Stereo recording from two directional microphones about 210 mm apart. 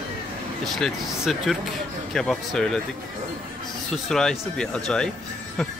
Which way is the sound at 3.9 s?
Centre (ahead or behind).